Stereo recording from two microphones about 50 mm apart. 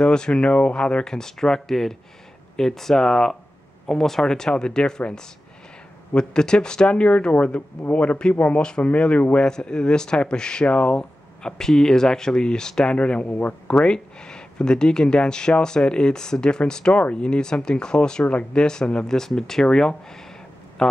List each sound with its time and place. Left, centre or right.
0.0 s speech: centre
9.5 s speech: centre
13.3 s speech: left
13.8 s speech: centre